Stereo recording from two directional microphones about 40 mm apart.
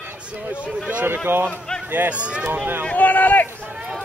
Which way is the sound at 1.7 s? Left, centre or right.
Left.